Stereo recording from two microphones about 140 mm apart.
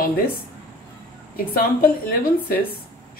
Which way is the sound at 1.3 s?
90° left.